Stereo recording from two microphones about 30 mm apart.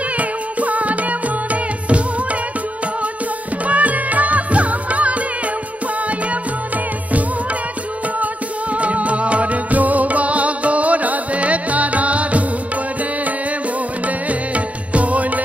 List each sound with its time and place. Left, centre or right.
0.2 s music: right
3.6 s music: right
8.7 s music: right
14.0 s music: right